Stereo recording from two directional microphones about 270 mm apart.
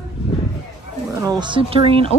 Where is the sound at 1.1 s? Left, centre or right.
Centre.